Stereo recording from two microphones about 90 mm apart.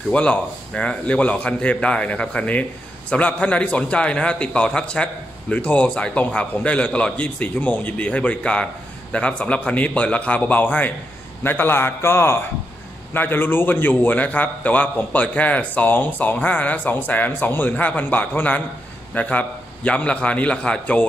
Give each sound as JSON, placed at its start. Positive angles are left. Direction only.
{"t": 0.1, "sound": "a man's voice", "side_deg": 10}